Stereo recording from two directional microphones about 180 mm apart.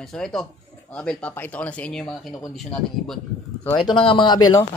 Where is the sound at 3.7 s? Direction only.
25° left (ahead or behind).